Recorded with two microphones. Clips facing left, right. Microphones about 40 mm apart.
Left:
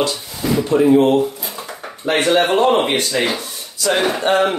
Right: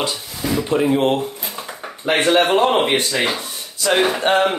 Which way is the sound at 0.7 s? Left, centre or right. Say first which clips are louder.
Left 5 dB; centre.